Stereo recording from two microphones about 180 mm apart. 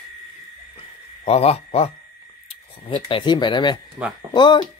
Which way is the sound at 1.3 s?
35° left (ahead or behind).